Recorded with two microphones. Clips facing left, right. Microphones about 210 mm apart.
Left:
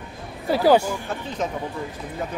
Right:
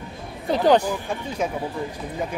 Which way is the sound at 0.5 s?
5° left (ahead or behind).